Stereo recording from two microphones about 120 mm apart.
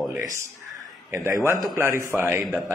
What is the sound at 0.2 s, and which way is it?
A man's voice, 25° right (ahead or behind).